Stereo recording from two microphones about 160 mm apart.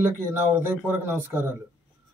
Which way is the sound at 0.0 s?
15° right (ahead or behind).